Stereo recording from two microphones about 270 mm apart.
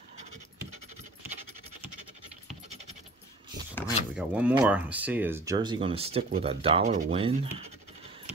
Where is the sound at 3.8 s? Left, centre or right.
Centre.